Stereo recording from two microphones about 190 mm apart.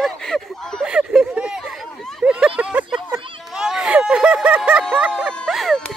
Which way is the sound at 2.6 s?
5° right (ahead or behind).